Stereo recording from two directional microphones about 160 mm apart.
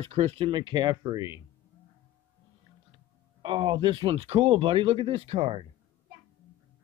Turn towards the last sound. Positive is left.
turn(degrees=-40)  # may be behind; listen again after turning